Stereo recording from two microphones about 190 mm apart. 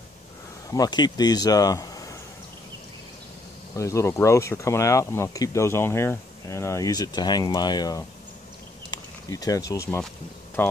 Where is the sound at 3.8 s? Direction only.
15° left (ahead or behind).